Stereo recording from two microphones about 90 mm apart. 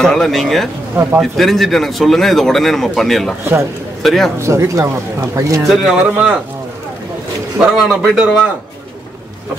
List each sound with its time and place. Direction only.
0.0 s a man's voice: 5° left (ahead or behind)
4.4 s speech: 30° right (ahead or behind)
5.7 s speech: 10° right (ahead or behind)
7.6 s a man's voice: 5° right (ahead or behind)